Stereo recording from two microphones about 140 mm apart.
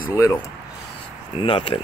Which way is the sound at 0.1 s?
25° left (ahead or behind).